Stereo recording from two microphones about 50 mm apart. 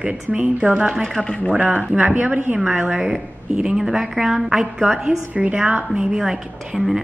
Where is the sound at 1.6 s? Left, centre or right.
Right.